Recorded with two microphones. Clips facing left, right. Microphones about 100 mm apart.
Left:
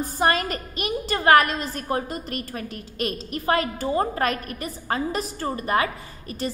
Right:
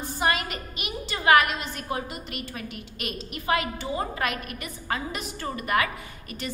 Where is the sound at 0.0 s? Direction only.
40° left (ahead or behind).